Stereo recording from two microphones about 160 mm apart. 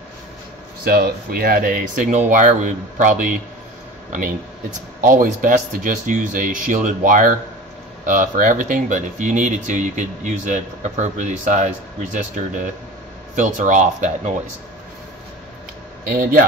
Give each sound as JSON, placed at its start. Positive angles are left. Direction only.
{"t": 0.8, "sound": "speech", "side_deg": -70}
{"t": 5.0, "sound": "speech", "side_deg": -55}
{"t": 16.1, "sound": "speech", "side_deg": -60}